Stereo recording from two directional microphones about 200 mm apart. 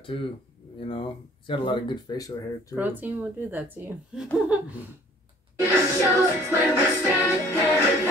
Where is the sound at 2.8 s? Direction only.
10° right (ahead or behind).